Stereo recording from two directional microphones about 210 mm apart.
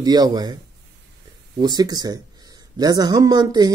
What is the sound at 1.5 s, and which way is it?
Speech, 20° right (ahead or behind).